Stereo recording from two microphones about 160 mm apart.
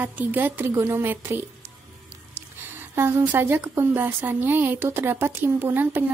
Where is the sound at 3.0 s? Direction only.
15° right (ahead or behind).